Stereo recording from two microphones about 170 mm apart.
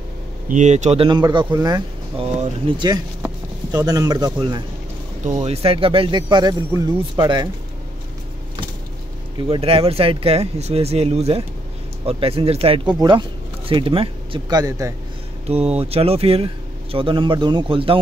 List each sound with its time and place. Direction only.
0.5 s speech: 45° right (ahead or behind)
1.0 s speech: 25° right (ahead or behind)
2.8 s speech: 25° right (ahead or behind)
5.2 s speech: 40° right (ahead or behind)
9.5 s speech: 35° right (ahead or behind)
15.4 s speech: 40° right (ahead or behind)